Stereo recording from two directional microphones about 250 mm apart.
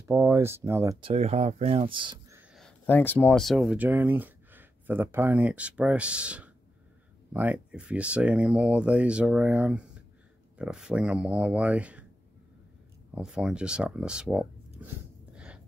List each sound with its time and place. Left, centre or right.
0.1 s speech: centre
1.1 s speech: right
2.5 s speech: centre
13.1 s speech: centre
15.3 s a sound: centre